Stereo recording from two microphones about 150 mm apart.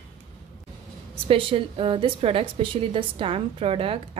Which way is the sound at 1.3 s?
35° right (ahead or behind).